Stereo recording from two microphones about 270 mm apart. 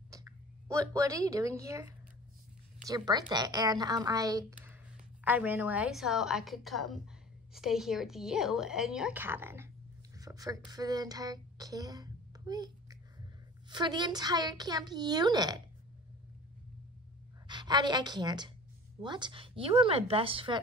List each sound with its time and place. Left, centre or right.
0.1 s a woman's voice: centre
17.5 s a woman's voice: centre